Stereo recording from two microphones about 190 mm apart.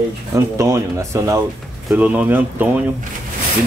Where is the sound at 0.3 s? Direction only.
15° right (ahead or behind).